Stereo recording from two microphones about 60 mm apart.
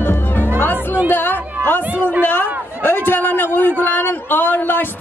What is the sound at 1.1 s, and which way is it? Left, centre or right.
Chatter, left.